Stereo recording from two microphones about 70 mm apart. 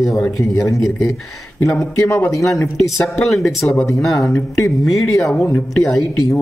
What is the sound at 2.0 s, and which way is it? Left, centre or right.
Speech, left.